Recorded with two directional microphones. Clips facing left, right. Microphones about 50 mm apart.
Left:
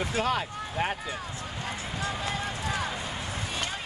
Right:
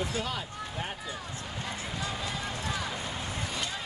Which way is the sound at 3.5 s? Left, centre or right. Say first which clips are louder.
Left 2 dB; left.